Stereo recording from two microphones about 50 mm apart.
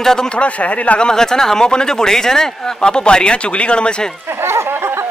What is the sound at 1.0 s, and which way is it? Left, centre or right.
Speech, centre.